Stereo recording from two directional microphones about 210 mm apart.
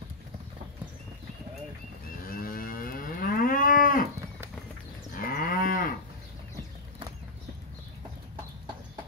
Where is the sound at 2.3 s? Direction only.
45° left (ahead or behind).